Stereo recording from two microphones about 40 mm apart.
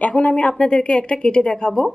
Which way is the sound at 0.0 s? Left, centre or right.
Left.